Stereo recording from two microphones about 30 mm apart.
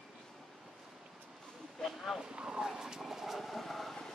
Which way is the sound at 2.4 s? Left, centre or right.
Centre.